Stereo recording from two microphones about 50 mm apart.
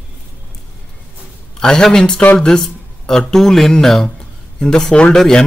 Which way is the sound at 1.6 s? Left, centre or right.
Centre.